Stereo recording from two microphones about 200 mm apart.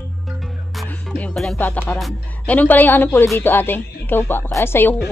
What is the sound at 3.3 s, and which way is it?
Speech, 10° left (ahead or behind).